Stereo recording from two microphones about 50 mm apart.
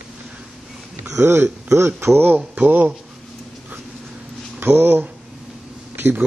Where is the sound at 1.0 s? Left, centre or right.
Right.